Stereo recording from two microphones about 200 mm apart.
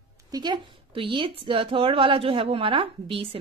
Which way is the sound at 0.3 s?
20° right (ahead or behind).